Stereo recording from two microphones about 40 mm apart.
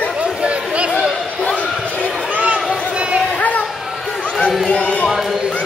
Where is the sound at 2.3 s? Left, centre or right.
Right.